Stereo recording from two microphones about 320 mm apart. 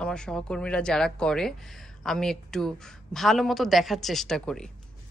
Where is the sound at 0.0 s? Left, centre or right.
Centre.